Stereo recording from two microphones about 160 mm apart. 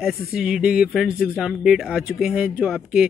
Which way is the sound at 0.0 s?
Centre (ahead or behind).